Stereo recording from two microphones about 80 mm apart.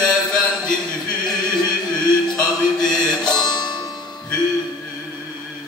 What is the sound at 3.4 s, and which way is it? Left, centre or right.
Music, left.